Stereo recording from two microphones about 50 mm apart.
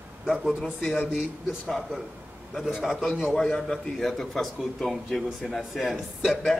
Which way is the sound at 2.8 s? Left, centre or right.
Centre.